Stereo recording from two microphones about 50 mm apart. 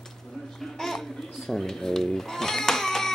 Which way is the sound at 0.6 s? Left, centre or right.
Centre.